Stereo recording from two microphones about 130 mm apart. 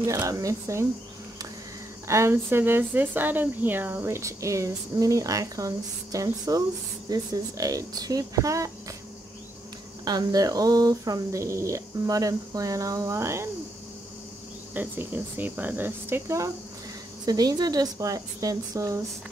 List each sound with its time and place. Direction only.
0.0 s speech: 25° right (ahead or behind)
2.0 s speech: 20° right (ahead or behind)
10.0 s speech: 30° right (ahead or behind)
14.7 s speech: 15° right (ahead or behind)